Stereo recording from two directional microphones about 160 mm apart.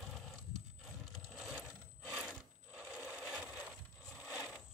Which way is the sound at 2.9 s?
5° right (ahead or behind).